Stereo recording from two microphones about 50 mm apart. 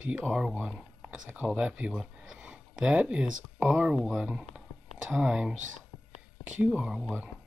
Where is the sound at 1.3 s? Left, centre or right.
Right.